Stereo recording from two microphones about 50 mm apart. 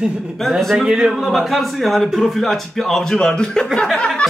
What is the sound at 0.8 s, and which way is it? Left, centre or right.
Speech, centre.